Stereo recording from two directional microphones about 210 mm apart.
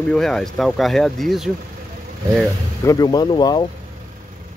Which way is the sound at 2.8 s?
15° left (ahead or behind).